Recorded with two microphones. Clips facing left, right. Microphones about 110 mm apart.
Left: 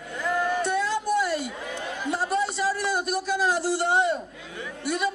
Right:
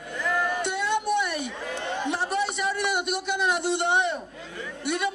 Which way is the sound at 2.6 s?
25° right (ahead or behind).